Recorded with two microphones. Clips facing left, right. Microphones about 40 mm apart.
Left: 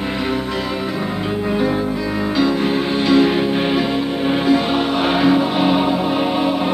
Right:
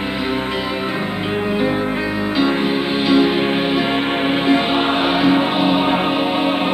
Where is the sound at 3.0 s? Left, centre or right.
Centre.